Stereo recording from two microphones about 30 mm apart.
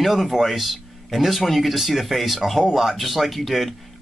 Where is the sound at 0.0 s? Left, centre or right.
Centre.